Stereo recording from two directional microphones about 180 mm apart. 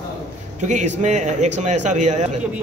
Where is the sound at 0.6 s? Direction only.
40° right (ahead or behind).